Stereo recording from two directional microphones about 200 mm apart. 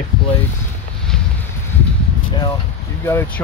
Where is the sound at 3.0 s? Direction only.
10° left (ahead or behind).